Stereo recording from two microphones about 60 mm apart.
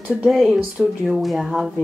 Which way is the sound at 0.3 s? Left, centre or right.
Centre.